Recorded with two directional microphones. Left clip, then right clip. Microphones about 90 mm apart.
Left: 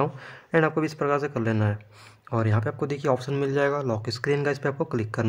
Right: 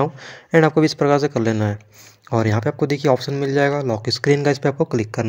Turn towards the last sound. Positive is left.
turn(degrees=-20)  # may be behind; listen again after turning